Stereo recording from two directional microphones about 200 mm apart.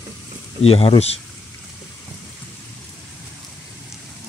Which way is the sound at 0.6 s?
30° left (ahead or behind).